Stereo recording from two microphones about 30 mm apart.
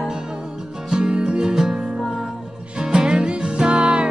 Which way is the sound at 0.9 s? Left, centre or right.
Right.